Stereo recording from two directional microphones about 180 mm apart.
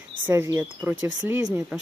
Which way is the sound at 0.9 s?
90° right.